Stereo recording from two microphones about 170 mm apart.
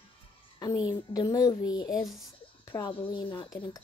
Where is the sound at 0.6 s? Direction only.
25° left (ahead or behind).